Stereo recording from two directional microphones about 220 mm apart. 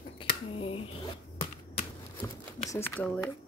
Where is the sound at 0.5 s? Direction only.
25° left (ahead or behind).